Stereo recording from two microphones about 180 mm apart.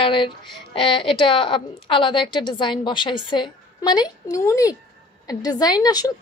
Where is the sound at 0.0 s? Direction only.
30° left (ahead or behind).